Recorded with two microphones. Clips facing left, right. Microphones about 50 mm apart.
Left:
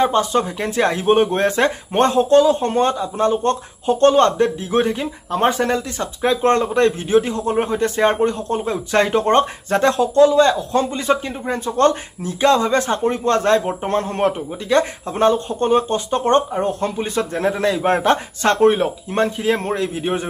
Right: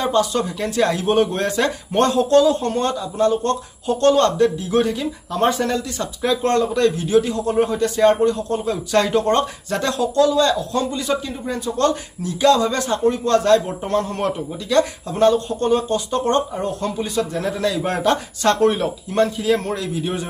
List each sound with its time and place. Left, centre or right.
0.0 s speech: left